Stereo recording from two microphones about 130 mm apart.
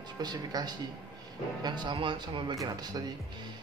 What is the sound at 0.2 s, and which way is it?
A man's voice, 30° right (ahead or behind).